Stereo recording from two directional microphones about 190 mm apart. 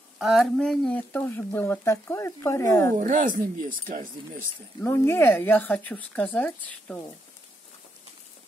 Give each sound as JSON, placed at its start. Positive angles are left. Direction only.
{"t": 0.2, "sound": "speech", "side_deg": 0}
{"t": 3.0, "sound": "speech", "side_deg": -45}
{"t": 4.8, "sound": "speech", "side_deg": 10}